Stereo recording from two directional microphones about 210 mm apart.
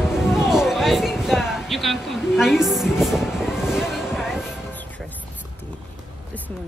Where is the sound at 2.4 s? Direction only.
Centre (ahead or behind).